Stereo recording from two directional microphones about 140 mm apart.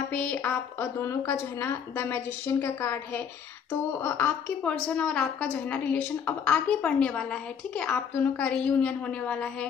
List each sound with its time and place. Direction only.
0.1 s a woman's voice: 10° left (ahead or behind)